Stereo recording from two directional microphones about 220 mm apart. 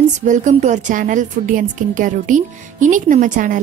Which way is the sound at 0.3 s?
35° right (ahead or behind).